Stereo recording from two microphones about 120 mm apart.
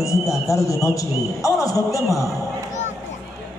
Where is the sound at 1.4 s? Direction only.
30° left (ahead or behind).